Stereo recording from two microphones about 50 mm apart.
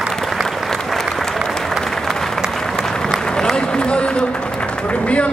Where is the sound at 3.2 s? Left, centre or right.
Centre.